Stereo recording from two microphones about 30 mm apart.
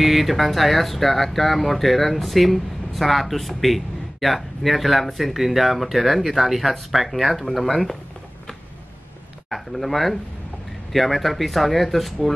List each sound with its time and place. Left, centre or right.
0.0 s speech: centre
9.5 s speech: centre